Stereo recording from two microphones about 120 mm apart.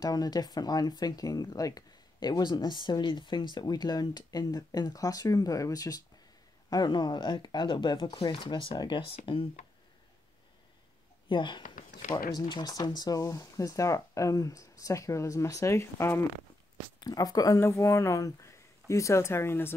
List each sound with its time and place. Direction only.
0.0 s speech: 35° left (ahead or behind); by 9.5 s 50° left (ahead or behind)
11.2 s speech: 40° left (ahead or behind); by 16.3 s 20° left (ahead or behind)
17.0 s speech: 30° left (ahead or behind)